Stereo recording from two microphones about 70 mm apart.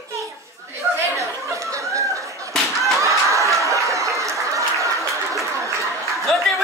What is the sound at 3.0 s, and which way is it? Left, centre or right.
Snicker, right.